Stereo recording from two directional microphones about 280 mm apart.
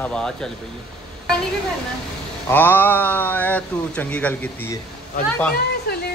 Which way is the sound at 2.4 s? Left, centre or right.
Centre.